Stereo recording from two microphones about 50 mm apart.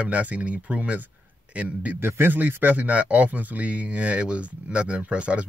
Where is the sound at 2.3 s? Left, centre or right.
Right.